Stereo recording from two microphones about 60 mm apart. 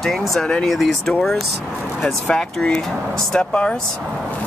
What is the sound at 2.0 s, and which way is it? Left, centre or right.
Speech, centre.